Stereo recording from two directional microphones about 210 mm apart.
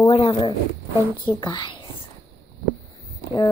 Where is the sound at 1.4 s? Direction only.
25° left (ahead or behind).